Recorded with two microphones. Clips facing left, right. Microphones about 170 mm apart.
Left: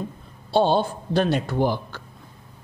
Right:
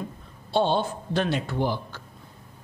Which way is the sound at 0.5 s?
35° left (ahead or behind).